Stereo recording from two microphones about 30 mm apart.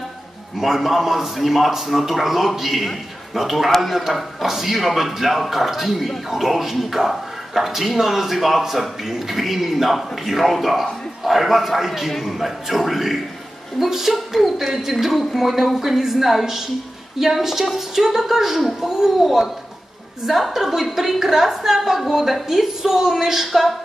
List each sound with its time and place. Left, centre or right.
0.6 s a woman's voice: centre
20.2 s a woman's voice: centre
22.8 s a woman's voice: centre